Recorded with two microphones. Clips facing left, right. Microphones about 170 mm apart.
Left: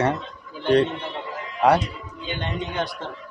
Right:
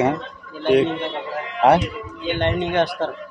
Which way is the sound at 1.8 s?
65° right (ahead or behind).